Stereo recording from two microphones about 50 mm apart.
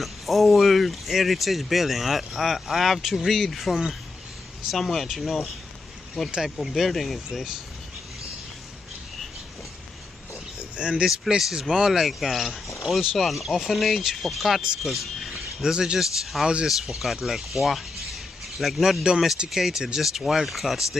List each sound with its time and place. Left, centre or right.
0.0 s speech: centre
10.8 s speech: centre
11.1 s speech: centre
15.7 s speech: centre
19.0 s speech: centre